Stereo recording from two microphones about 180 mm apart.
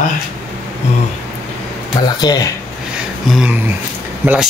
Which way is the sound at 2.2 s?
20° left (ahead or behind).